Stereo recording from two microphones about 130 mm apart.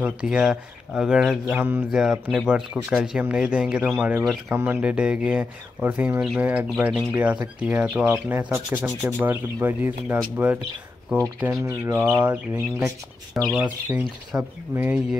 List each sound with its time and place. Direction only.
0.0 s speech: 10° right (ahead or behind)
1.6 s speech: 15° right (ahead or behind)
11.6 s bird: 20° right (ahead or behind)
13.3 s speech: 5° right (ahead or behind)